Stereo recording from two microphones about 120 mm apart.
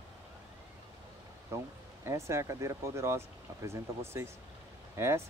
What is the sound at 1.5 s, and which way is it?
Speech, 20° right (ahead or behind).